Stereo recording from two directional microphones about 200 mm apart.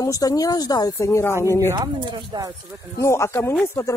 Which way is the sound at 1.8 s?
25° right (ahead or behind).